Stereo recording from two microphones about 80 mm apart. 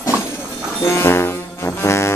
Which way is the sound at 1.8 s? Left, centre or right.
Left.